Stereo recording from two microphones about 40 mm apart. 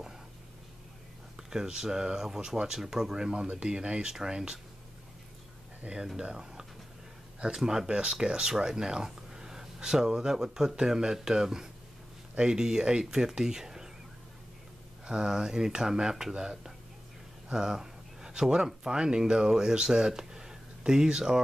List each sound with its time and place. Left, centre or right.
1.3 s speech: centre
6.1 s speech: centre
15.0 s speech: centre